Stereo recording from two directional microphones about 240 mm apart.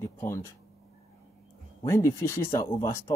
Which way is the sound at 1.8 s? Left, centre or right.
Centre.